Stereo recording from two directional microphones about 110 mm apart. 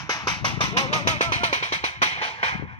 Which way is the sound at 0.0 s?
35° left (ahead or behind).